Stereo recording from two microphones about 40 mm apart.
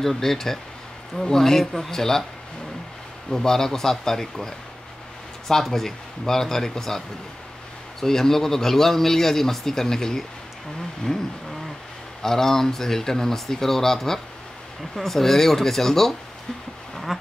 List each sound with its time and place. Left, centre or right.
0.0 s speech: centre
3.3 s speech: centre
5.5 s speech: centre
8.0 s speech: centre
11.1 s a sound: left
12.2 s speech: centre
16.9 s a sound: centre